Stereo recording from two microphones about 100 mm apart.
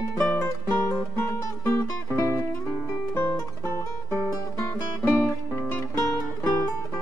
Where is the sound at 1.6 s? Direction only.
25° left (ahead or behind).